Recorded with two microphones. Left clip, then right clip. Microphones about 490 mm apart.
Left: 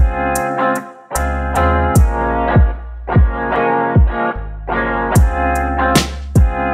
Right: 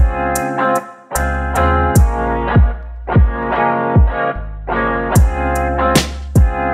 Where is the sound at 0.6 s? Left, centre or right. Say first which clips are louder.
Right 1 dB; centre.